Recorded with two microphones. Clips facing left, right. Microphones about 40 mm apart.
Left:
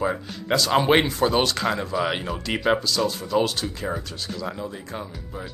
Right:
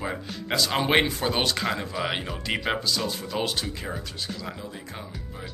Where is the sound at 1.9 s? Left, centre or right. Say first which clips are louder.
Left 4 dB; centre.